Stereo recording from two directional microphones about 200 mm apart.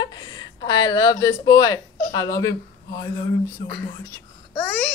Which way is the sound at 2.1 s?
15° left (ahead or behind).